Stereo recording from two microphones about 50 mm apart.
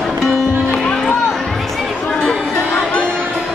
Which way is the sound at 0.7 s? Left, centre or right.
Left.